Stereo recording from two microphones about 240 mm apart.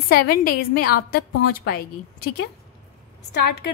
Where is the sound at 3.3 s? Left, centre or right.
Left.